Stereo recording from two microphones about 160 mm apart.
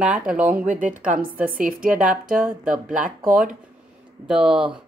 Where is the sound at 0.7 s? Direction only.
55° right (ahead or behind).